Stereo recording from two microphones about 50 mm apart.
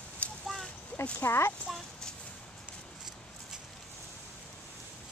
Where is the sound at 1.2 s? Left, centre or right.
Left.